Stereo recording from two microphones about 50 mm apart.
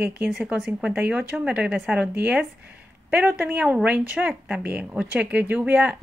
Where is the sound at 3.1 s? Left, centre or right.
Right.